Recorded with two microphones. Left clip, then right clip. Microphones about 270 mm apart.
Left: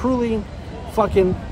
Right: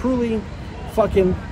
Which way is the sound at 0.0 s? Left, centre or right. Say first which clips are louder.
Left 1 dB; centre.